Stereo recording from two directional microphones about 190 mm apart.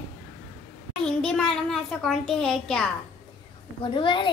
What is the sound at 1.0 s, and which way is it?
A child's voice, 5° left (ahead or behind).